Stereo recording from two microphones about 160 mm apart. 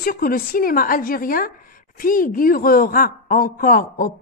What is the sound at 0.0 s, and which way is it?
Speech, 65° left (ahead or behind).